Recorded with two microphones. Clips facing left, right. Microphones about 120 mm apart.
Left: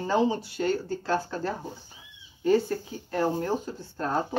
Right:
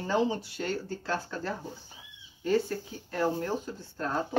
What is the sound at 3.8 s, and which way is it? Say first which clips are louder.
Speech: left 3 dB; 5° left (ahead or behind).